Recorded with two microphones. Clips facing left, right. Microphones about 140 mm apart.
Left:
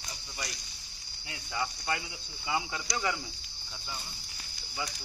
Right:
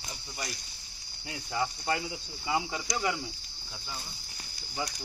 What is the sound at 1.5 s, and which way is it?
Speech, 30° right (ahead or behind).